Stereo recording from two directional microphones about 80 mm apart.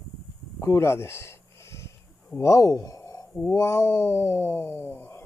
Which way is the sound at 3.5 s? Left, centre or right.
Left.